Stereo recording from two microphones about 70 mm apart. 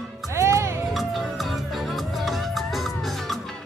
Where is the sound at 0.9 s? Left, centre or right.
Centre.